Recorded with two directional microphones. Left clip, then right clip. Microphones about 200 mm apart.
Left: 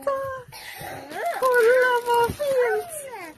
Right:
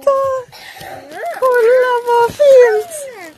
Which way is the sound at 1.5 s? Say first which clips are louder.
Right 7 dB; 25° right (ahead or behind).